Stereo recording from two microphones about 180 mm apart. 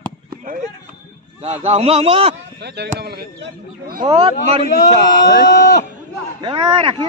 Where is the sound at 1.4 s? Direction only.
35° right (ahead or behind).